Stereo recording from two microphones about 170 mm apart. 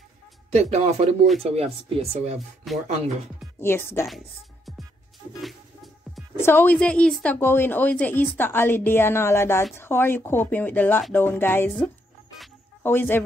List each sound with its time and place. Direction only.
0.5 s speech: 40° right (ahead or behind)
2.6 s speech: centre (ahead or behind)
3.5 s a woman's voice: 15° left (ahead or behind)
6.4 s a woman's voice: 10° left (ahead or behind)
12.8 s a woman's voice: 10° left (ahead or behind)